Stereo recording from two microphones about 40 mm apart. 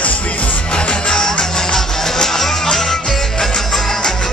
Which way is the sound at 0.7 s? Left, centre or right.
Left.